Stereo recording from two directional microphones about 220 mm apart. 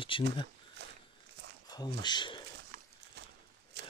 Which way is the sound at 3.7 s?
50° right (ahead or behind).